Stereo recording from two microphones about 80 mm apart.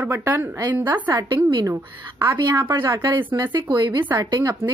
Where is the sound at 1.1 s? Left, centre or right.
Right.